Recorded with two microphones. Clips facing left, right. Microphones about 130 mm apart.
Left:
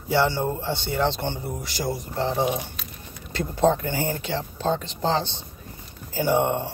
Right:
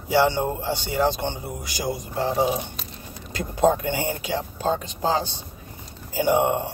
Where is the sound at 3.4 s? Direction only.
15° right (ahead or behind).